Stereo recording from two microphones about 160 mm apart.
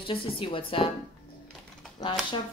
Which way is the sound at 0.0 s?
35° left (ahead or behind).